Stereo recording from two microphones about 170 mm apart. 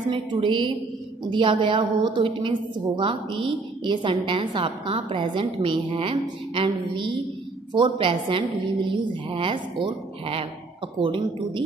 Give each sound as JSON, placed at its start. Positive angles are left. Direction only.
{"t": 0.1, "sound": "a woman's voice", "side_deg": -30}